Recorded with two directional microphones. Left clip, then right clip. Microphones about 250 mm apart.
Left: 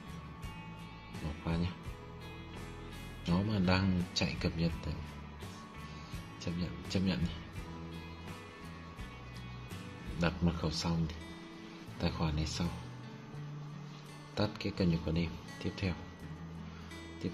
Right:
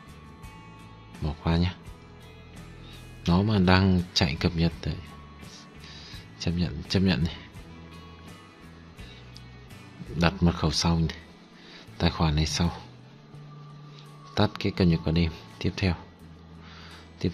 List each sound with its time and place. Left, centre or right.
1.4 s speech: right
3.3 s speech: right
6.4 s speech: right
10.1 s speech: right
14.3 s speech: right